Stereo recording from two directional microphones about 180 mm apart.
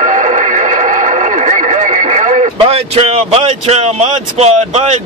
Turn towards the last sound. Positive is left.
turn(degrees=-35)  # may be behind; listen again after turning